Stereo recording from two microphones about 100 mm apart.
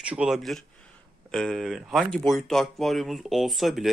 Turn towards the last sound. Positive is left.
turn(degrees=0)  # may be behind; listen again after turning